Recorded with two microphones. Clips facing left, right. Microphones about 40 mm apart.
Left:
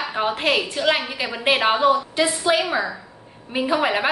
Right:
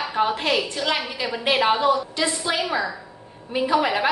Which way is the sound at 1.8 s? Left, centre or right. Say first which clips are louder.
Left 3 dB; left.